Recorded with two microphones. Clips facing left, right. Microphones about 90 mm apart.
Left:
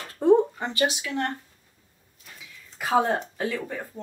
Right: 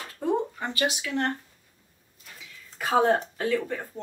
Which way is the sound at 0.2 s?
25° left (ahead or behind).